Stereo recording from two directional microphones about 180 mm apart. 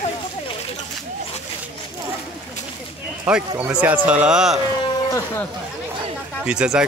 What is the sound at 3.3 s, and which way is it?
Speech, 5° right (ahead or behind).